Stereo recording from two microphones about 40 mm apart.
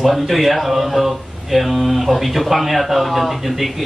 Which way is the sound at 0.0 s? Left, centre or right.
Centre.